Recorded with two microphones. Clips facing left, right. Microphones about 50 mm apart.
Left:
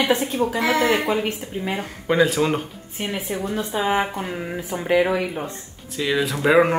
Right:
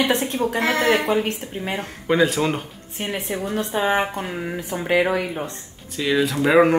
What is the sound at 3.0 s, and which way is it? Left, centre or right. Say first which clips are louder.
Speech: even; right.